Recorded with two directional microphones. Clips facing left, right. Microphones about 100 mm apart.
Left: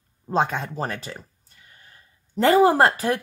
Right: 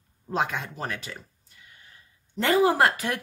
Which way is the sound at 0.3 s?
30° left (ahead or behind).